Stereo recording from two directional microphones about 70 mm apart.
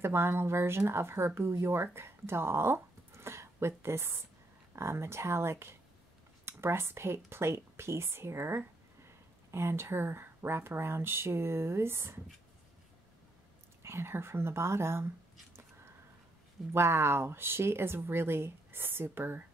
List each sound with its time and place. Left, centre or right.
0.0 s speech: right
13.8 s speech: right
16.7 s speech: right